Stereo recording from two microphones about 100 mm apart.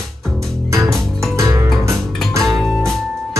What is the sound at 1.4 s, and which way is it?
Music, 30° right (ahead or behind).